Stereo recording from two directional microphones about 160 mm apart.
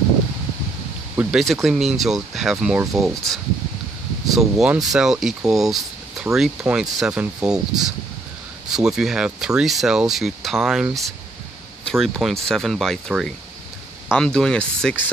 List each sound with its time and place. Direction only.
1.1 s speech: centre (ahead or behind)
2.8 s speech: 20° right (ahead or behind)
4.3 s speech: centre (ahead or behind)
5.5 s a sound: centre (ahead or behind)
6.3 s speech: 5° right (ahead or behind)